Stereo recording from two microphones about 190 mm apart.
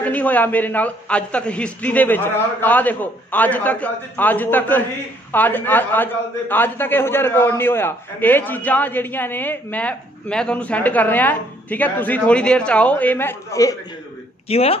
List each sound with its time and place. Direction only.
0.0 s a man's voice: 10° left (ahead or behind)
14.5 s speech: 30° left (ahead or behind)